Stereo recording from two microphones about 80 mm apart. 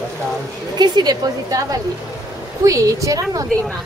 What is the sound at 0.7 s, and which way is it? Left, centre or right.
Speech, right.